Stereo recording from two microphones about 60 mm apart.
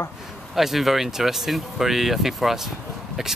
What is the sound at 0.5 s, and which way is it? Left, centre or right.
Speech, centre.